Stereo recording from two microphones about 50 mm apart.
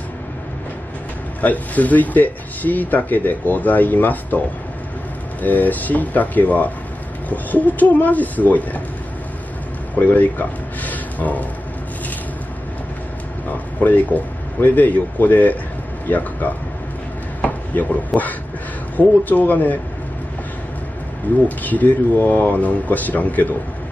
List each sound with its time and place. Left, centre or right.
1.4 s speech: left
5.4 s speech: left
9.9 s speech: left
10.8 s a sound: left
13.5 s a sound: left
14.1 s a man's voice: left
17.4 s a sound: left
18.9 s speech: left
21.5 s speech: left